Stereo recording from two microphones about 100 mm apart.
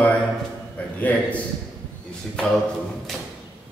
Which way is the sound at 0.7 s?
15° left (ahead or behind).